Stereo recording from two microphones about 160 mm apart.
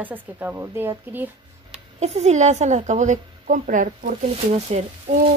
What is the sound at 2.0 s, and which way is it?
A woman's voice, 45° right (ahead or behind).